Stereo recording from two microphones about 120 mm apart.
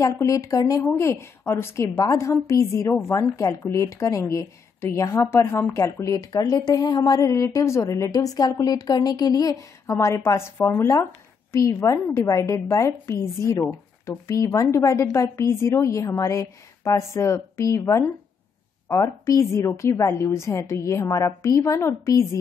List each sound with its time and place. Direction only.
0.0 s a woman's voice: 25° left (ahead or behind)